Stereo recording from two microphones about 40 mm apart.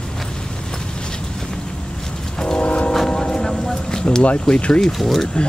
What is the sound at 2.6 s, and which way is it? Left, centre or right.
Train, left.